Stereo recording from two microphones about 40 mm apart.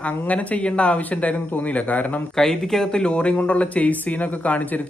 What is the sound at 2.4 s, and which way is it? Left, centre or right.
Speech, centre.